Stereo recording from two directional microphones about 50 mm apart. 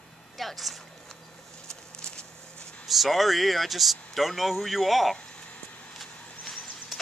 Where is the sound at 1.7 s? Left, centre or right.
Centre.